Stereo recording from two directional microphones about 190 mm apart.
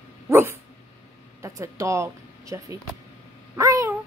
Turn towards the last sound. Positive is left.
turn(degrees=-15)  # may be behind; listen again after turning